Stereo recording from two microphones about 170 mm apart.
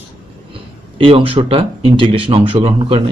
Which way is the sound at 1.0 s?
30° right (ahead or behind).